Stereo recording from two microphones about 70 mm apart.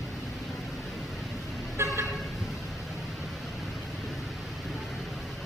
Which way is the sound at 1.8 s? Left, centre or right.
Right.